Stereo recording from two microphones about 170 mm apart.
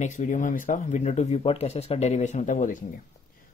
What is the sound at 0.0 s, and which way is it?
Speech, 45° left (ahead or behind).